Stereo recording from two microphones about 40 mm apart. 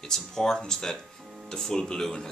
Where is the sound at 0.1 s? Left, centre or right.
Centre.